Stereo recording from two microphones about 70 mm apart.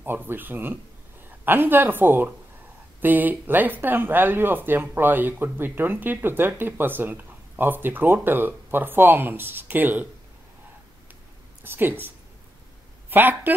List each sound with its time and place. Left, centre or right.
0.0 s speech: right
11.6 s speech: right
13.1 s speech: right